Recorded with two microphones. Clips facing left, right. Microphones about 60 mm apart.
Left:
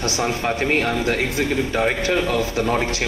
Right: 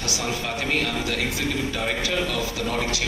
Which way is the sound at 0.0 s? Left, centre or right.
Left.